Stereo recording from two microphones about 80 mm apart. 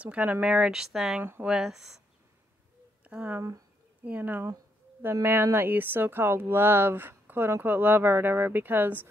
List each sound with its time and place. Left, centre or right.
0.0 s speech: centre
3.0 s speech: centre